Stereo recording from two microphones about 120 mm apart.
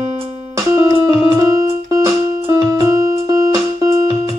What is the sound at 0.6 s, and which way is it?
Music, 25° right (ahead or behind).